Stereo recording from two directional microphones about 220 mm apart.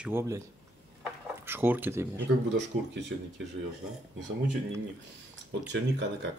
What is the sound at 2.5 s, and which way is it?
Speech, 55° right (ahead or behind).